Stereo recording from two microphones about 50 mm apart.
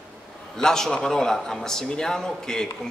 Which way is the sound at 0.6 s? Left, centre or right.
Centre.